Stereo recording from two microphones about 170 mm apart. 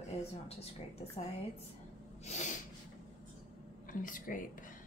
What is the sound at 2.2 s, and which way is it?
Speech, 40° left (ahead or behind).